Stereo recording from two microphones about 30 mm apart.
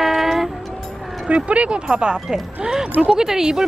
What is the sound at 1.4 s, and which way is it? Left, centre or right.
Music, right.